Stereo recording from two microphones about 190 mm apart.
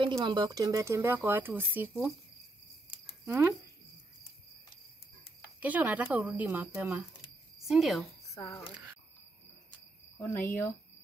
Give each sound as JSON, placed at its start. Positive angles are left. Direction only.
{"t": 0.1, "sound": "speech", "side_deg": -25}
{"t": 2.9, "sound": "a sound", "side_deg": -15}
{"t": 5.6, "sound": "speech", "side_deg": -10}
{"t": 8.4, "sound": "speech", "side_deg": 15}
{"t": 10.2, "sound": "speech", "side_deg": 10}